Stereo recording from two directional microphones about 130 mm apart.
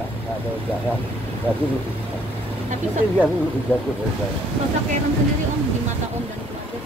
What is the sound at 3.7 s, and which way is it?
Speech, 10° right (ahead or behind).